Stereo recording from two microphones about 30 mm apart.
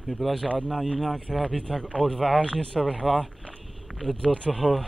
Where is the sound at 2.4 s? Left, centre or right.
Left.